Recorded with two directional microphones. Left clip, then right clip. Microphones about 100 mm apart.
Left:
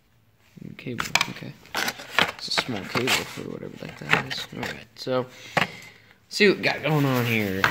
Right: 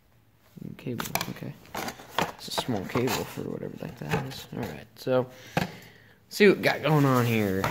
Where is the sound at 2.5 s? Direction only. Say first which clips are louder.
Left 4 dB; 45° right (ahead or behind).